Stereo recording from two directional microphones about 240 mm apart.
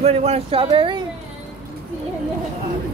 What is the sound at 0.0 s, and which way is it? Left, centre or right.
Speech, right.